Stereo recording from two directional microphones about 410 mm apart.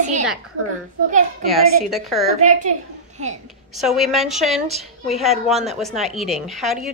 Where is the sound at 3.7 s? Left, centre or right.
Centre.